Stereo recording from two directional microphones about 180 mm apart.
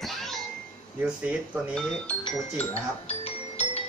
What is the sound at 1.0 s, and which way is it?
Speech, 5° right (ahead or behind).